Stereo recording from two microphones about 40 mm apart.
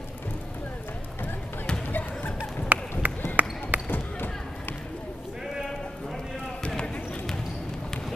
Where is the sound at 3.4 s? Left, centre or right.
Right.